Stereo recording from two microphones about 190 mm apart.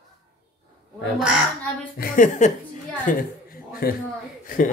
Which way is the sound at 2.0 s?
45° left (ahead or behind).